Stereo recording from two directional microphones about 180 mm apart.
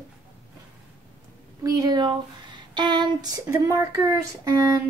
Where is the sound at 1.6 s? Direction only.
20° right (ahead or behind).